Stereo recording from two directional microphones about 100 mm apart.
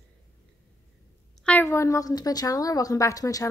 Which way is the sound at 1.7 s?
30° left (ahead or behind).